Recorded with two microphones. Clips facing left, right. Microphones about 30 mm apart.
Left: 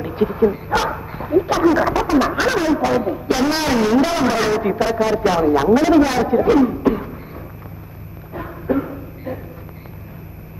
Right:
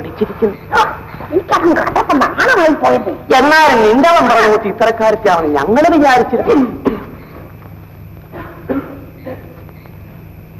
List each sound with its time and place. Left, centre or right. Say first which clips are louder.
0.0 s speech: right 2 dB; right
0.9 s dog: right 2 dB; right
1.8 s a man's voice: right 4 dB; right
2.0 s a man's voice: right 6 dB; right
3.3 s a man's voice: right 13 dB; right
5.4 s a man's voice: right 2 dB; right
5.9 s a man's voice: right 6 dB; right
6.2 s a man's voice: right 2 dB; right
6.6 s a sound: right 2 dB; right
8.3 s a sound: right 1 dB; right